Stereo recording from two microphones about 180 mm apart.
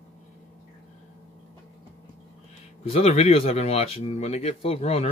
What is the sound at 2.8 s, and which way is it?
Speech, 35° left (ahead or behind).